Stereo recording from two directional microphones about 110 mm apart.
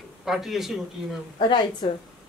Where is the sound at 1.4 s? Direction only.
45° left (ahead or behind).